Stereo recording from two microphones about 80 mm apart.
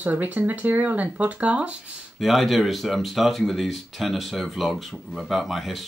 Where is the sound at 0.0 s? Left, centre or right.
Right.